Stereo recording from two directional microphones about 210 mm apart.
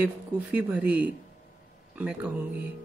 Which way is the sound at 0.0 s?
10° right (ahead or behind).